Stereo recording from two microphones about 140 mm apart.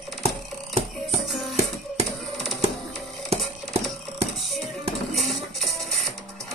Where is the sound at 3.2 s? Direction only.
45° right (ahead or behind).